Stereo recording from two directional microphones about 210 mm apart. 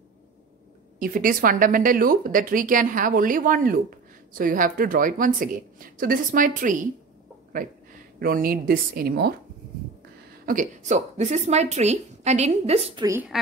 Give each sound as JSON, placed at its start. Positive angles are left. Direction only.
{"t": 0.9, "sound": "a woman's voice", "side_deg": -40}
{"t": 10.4, "sound": "speech", "side_deg": -40}
{"t": 13.0, "sound": "speech", "side_deg": -10}